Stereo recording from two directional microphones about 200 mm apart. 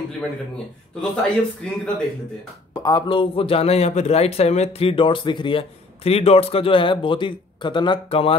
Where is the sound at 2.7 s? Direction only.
20° left (ahead or behind).